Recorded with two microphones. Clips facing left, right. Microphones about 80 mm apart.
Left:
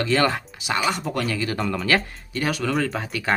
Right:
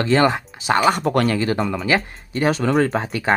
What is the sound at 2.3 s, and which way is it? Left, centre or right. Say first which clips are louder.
Speech: right 6 dB; right.